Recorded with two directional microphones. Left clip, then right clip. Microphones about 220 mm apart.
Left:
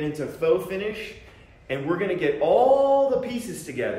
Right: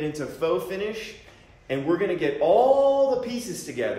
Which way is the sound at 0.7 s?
45° right (ahead or behind).